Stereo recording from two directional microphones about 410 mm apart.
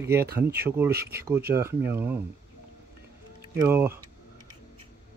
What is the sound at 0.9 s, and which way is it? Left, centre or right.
Speech, right.